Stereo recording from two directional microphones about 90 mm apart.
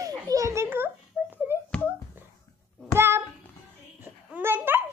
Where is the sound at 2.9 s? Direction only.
30° right (ahead or behind).